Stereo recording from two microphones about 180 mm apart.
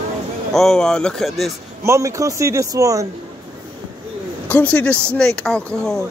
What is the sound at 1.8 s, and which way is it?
Speech, 15° right (ahead or behind).